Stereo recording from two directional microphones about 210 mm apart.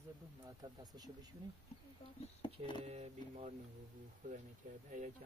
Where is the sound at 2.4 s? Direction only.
25° left (ahead or behind).